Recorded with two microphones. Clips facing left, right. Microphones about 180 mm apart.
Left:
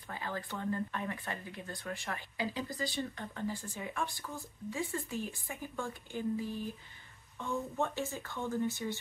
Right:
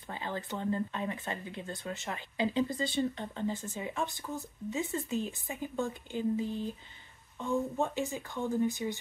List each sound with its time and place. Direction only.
0.1 s speech: 25° right (ahead or behind)